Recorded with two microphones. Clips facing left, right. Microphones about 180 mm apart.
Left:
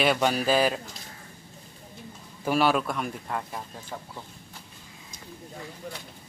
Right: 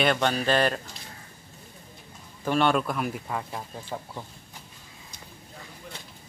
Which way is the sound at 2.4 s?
5° left (ahead or behind).